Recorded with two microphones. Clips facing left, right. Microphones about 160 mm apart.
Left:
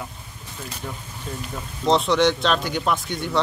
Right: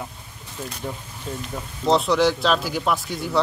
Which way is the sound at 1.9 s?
Centre (ahead or behind).